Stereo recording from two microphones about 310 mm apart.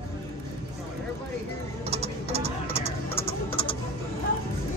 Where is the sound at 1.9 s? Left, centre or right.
Centre.